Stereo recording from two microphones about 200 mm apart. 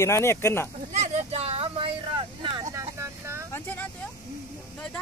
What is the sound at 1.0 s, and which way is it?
Vehicle, 30° right (ahead or behind).